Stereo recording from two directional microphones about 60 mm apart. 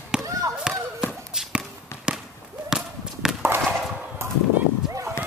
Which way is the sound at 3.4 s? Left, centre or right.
Right.